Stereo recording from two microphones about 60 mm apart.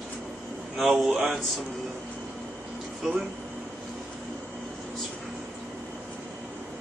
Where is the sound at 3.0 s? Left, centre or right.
Centre.